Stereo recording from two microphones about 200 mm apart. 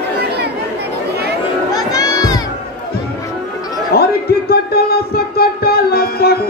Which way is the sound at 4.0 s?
50° left (ahead or behind).